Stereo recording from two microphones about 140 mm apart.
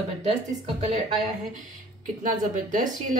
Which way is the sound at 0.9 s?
55° right (ahead or behind).